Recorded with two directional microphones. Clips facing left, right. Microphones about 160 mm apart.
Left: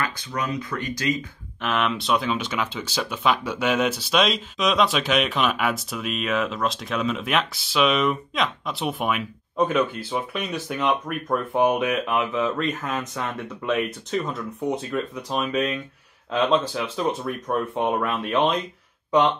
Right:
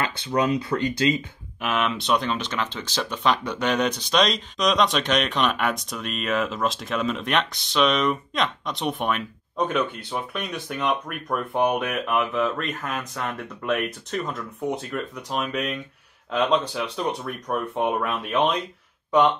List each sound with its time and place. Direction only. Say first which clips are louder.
0.0 s speech: right 5 dB; 30° right (ahead or behind)
1.6 s speech: left 1 dB; 5° right (ahead or behind)